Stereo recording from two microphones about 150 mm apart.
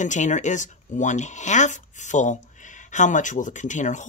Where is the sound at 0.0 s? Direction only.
55° left (ahead or behind).